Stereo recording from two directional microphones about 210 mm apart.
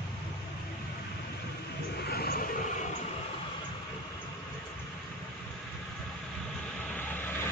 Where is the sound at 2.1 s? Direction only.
45° left (ahead or behind).